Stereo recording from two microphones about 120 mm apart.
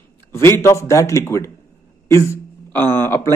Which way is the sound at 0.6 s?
25° left (ahead or behind).